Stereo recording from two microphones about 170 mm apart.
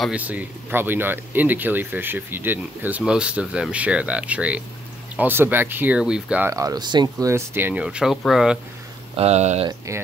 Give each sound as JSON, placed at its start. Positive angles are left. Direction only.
{"t": 0.0, "sound": "speech", "side_deg": -10}
{"t": 6.5, "sound": "speech", "side_deg": -20}
{"t": 9.1, "sound": "speech", "side_deg": -40}